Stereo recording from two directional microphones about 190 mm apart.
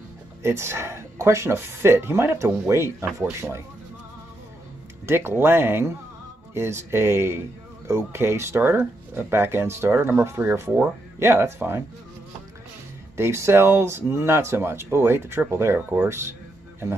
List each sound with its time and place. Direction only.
0.4 s speech: 15° right (ahead or behind)
5.0 s speech: 10° right (ahead or behind)
13.1 s speech: 15° right (ahead or behind)